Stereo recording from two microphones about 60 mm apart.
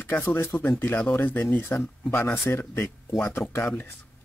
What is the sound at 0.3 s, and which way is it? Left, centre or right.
Speech, left.